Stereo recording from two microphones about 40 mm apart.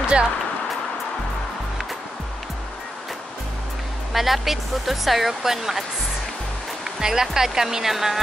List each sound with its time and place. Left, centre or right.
0.0 s speech: right
4.1 s speech: centre
7.0 s speech: centre